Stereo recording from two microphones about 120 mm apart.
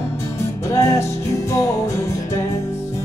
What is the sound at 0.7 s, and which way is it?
Music, 25° left (ahead or behind).